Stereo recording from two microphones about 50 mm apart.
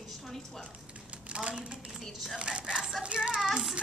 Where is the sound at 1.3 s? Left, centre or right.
Right.